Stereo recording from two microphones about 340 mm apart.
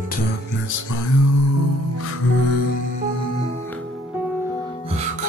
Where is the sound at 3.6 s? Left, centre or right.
Centre.